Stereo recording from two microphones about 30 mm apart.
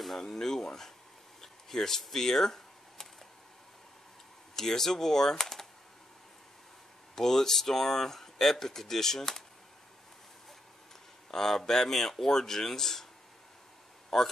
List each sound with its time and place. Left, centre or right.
0.3 s speech: centre
1.4 s a sound: centre
4.6 s speech: centre
7.2 s speech: centre
11.2 s speech: centre
14.1 s speech: centre